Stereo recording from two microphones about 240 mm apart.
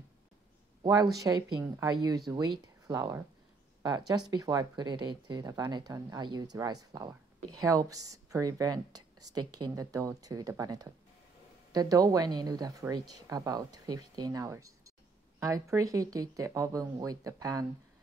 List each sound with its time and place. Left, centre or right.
1.1 s speech: centre
4.3 s speech: centre